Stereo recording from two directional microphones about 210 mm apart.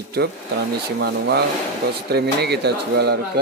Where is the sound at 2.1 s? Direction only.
50° right (ahead or behind).